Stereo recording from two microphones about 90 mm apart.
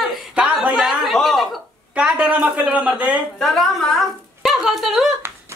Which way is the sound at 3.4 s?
5° left (ahead or behind).